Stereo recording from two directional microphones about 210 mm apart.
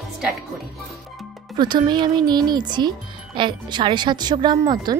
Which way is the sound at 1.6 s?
20° right (ahead or behind).